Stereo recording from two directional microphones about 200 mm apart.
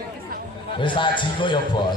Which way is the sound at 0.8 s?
25° left (ahead or behind).